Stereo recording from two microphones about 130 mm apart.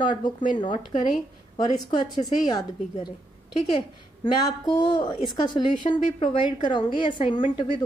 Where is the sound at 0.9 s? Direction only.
70° left (ahead or behind).